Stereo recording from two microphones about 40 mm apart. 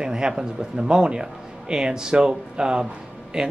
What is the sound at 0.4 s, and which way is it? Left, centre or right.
Speech, right.